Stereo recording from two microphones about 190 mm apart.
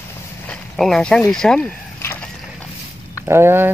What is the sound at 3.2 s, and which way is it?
Speech, 15° right (ahead or behind).